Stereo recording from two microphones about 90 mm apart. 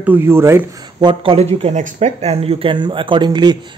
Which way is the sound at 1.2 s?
90° right.